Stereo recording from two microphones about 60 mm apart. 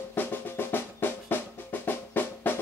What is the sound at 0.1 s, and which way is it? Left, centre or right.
Drum, left.